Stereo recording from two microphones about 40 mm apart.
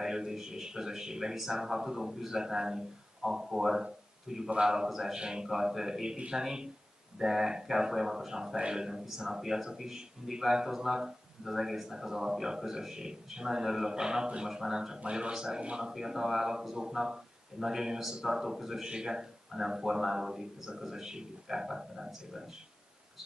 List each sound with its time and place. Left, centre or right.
0.0 s speech: centre
6.1 s speech: right
15.0 s speech: right
15.9 s speech: centre